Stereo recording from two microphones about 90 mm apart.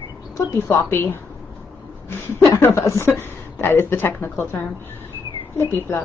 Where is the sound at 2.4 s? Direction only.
30° left (ahead or behind).